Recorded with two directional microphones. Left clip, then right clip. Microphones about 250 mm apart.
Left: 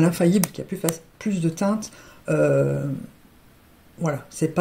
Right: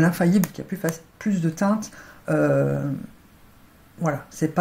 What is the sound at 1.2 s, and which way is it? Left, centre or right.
Speech, left.